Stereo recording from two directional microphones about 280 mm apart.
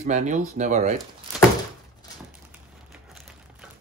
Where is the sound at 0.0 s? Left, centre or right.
Right.